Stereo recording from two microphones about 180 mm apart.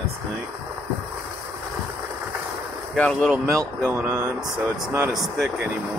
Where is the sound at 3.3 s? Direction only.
15° right (ahead or behind).